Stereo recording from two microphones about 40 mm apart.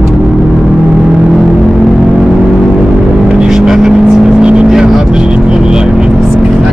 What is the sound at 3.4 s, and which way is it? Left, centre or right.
Vehicle, centre.